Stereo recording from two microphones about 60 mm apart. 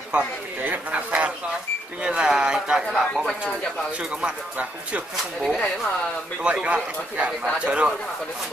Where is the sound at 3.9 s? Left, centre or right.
Centre.